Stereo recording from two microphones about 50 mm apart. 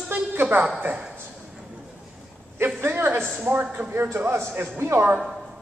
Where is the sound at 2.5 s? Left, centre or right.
Right.